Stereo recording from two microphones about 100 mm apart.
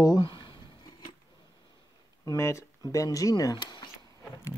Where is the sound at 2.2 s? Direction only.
30° left (ahead or behind); by 3.9 s 50° left (ahead or behind).